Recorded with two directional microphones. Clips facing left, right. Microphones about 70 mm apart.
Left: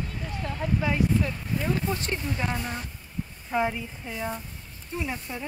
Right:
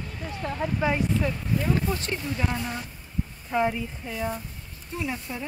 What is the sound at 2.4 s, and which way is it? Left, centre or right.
A woman's voice, centre.